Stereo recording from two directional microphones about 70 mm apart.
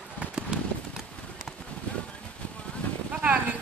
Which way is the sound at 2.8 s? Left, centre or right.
Left.